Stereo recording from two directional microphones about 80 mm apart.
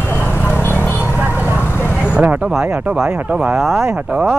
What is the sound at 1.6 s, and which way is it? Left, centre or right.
Vehicle, left.